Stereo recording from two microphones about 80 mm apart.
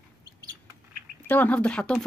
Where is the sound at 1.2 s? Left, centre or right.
Left.